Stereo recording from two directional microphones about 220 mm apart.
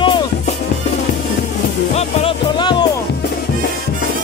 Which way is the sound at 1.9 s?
25° left (ahead or behind).